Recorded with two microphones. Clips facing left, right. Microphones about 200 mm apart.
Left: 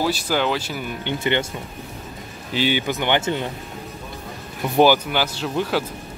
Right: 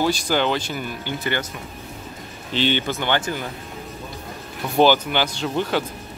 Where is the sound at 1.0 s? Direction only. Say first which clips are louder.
Left 5 dB; 25° left (ahead or behind).